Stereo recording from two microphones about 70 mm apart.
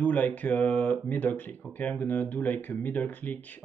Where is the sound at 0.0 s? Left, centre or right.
Left.